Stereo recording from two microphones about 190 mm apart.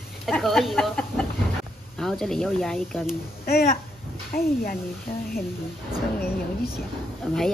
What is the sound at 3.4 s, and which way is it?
A child's voice, 55° left (ahead or behind).